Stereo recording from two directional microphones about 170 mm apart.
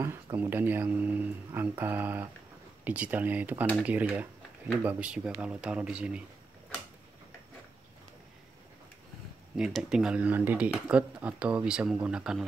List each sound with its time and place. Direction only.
0.0 s speech: 15° right (ahead or behind)
9.6 s speech: centre (ahead or behind)